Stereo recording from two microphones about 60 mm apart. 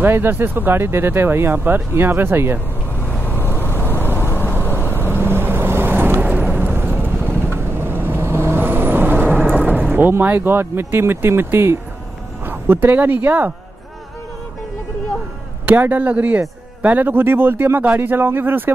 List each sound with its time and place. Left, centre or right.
0.0 s speech: right
3.0 s vehicle: left
5.1 s vehicle: right
6.2 s horse: right
7.2 s vehicle: right
9.6 s music: right
9.9 s speech: right
15.7 s speech: right